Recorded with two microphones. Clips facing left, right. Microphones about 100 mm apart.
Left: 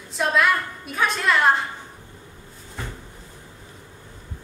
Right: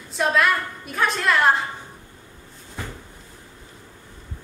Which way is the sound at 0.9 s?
Centre (ahead or behind).